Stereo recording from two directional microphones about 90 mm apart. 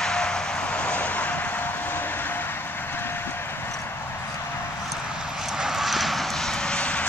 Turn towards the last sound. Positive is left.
turn(degrees=10)  # may be behind; listen again after turning